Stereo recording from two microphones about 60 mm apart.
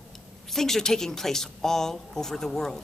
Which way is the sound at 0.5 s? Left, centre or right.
Centre.